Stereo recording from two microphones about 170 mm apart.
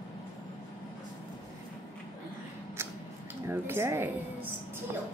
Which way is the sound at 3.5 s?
15° right (ahead or behind).